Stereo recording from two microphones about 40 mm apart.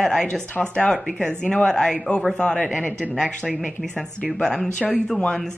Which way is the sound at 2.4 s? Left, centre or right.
Left.